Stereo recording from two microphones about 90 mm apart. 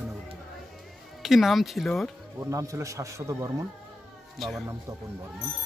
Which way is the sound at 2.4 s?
35° right (ahead or behind).